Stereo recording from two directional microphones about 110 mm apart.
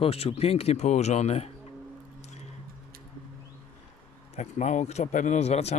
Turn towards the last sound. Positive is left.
turn(degrees=75)  # may be behind; listen again after turning